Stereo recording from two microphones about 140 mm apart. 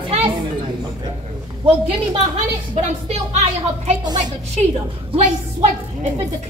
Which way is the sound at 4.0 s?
30° right (ahead or behind).